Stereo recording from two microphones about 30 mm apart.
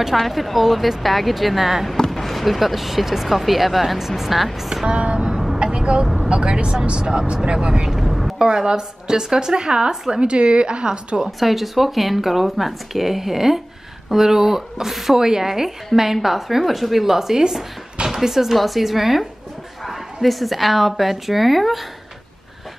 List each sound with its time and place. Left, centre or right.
0.3 s speech: centre
4.8 s speech: right
5.6 s vehicle: right
6.1 s speech: right
7.9 s speech: centre
8.4 s speech: centre
11.2 s a woman's voice: centre